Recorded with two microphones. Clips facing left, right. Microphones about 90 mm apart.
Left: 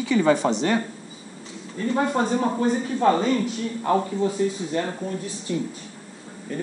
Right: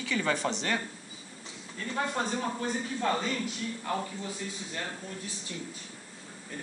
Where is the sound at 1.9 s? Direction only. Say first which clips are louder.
Left 9 dB; 35° left (ahead or behind).